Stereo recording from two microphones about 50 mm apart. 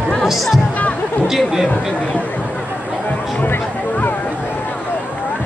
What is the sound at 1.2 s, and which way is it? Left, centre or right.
Speech, centre.